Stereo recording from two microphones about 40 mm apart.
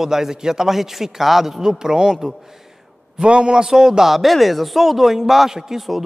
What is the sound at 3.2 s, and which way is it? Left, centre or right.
A man's voice, right.